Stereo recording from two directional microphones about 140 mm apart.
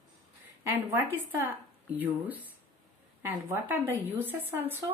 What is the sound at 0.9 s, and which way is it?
Speech, 15° right (ahead or behind).